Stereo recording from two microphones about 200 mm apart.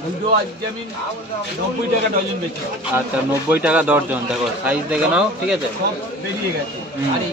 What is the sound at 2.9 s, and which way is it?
Speech, 10° right (ahead or behind).